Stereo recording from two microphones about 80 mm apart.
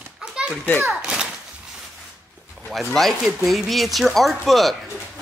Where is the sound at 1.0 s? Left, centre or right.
Centre.